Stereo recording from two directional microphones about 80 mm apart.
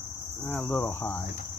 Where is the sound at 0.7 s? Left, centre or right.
Left.